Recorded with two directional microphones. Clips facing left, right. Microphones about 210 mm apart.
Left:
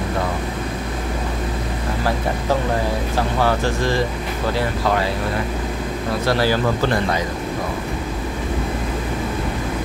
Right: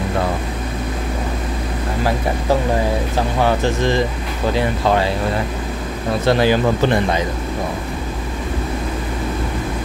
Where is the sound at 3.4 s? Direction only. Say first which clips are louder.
Right 3 dB; 20° right (ahead or behind).